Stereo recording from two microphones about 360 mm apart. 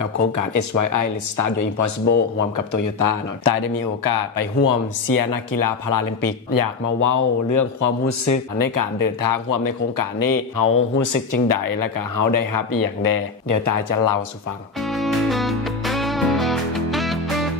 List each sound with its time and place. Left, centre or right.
0.4 s speech: left
2.0 s speech: left
2.5 s speech: left
4.6 s speech: left
14.8 s music: centre